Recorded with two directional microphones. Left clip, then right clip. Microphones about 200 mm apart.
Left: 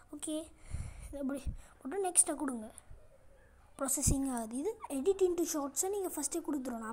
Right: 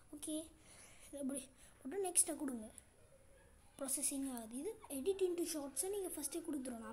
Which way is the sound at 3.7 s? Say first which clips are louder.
Left 9 dB; 20° left (ahead or behind).